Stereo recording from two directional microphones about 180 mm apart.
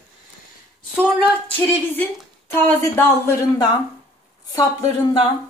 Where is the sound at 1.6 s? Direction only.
10° left (ahead or behind).